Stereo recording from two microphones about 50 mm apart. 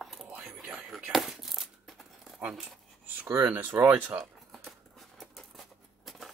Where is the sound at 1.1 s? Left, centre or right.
Centre.